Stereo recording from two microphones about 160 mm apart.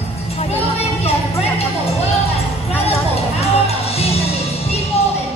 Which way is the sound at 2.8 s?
40° left (ahead or behind).